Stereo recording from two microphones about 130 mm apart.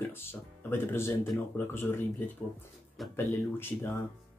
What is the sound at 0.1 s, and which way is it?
Speech, 20° left (ahead or behind).